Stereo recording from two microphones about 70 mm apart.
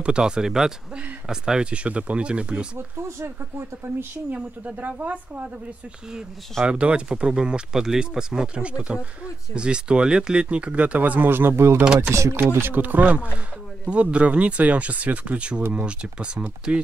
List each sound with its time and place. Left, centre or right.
0.0 s speech: centre
3.0 s speech: right
4.3 s speech: right
6.6 s speech: centre; by 11.8 s right
11.8 s speech: centre
12.1 s speech: right
12.4 s speech: right; by 16.8 s centre